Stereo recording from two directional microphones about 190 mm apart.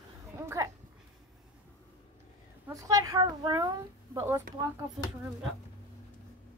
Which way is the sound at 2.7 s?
15° right (ahead or behind).